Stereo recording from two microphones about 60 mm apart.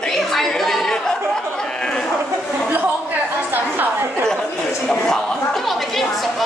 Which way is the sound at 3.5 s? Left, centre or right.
Right.